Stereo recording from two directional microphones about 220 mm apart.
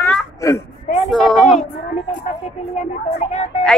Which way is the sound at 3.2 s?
30° left (ahead or behind).